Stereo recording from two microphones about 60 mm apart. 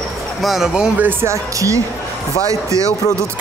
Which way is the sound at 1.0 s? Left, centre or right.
Right.